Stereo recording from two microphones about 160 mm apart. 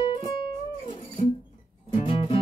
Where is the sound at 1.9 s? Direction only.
30° left (ahead or behind).